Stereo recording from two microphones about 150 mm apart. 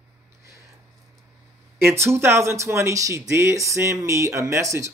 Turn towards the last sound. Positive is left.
turn(degrees=-20)  # may be behind; listen again after turning